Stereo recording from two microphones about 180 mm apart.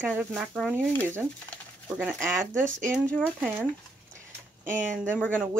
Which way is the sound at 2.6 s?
45° right (ahead or behind).